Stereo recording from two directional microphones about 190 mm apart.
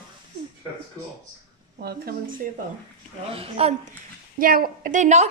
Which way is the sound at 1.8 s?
55° right (ahead or behind).